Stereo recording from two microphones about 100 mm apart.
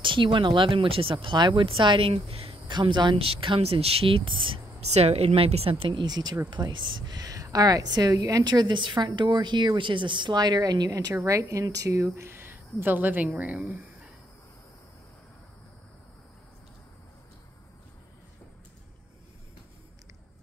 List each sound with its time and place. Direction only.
0.0 s speech: 55° right (ahead or behind); by 2.5 s 80° right
2.7 s speech: 50° right (ahead or behind); by 5.8 s 75° right (ahead or behind)
5.8 s a woman's voice: 50° right (ahead or behind); by 13.8 s 15° right (ahead or behind)